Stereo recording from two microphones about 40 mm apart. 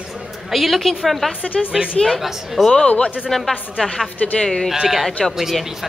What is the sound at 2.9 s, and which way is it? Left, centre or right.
Speech, left.